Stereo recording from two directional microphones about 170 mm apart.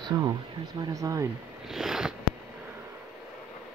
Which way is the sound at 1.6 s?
Centre (ahead or behind).